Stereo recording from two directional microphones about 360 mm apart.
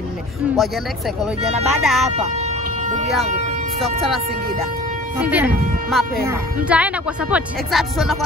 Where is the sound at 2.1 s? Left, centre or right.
Centre.